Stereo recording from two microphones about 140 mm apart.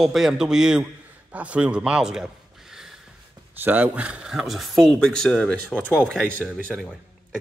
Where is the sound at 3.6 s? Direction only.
10° right (ahead or behind).